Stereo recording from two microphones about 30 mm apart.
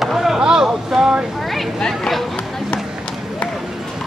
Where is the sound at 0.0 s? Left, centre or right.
Centre.